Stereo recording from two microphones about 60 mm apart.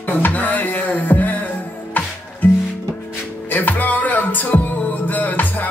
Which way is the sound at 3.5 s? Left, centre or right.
Left.